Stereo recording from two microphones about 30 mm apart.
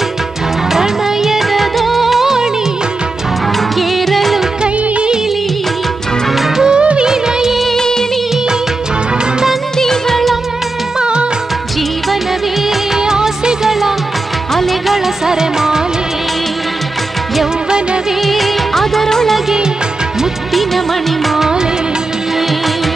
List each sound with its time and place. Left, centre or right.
0.7 s music of bollywood: centre
3.9 s music: centre
6.5 s music: right
6.8 s music: right
7.1 s music of bollywood: centre
7.7 s music of bollywood: centre
9.8 s music: centre
11.0 s music of bollywood: right
12.9 s music of bollywood: centre
13.7 s music of bollywood: centre
14.5 s music: centre
15.2 s music: centre
18.2 s music of bollywood: centre
21.4 s music of bollywood: centre